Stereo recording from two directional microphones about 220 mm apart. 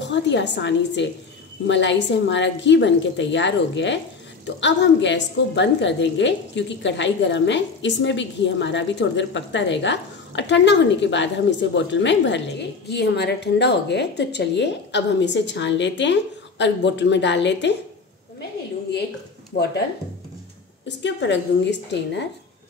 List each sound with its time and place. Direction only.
0.0 s a woman's voice: 55° left (ahead or behind)
21.0 s a woman's voice: 55° left (ahead or behind)